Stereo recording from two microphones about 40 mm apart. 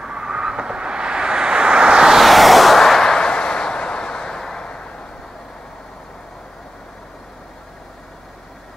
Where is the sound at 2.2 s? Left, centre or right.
Centre; by 5.1 s left.